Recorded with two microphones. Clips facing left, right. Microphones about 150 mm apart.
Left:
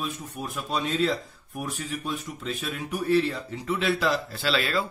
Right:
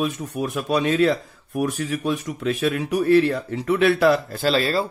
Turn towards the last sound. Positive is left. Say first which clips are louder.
# right 6 dB
turn(degrees=-35)  # may be behind; listen again after turning